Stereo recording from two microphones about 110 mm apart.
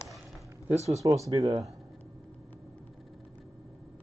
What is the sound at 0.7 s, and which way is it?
Speech, 75° right (ahead or behind).